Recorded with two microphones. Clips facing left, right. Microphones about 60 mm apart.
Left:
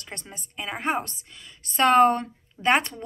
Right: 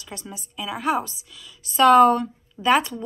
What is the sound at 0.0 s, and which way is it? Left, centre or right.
A woman's voice, left.